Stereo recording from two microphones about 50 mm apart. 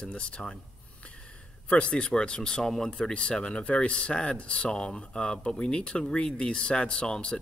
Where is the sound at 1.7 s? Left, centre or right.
Left.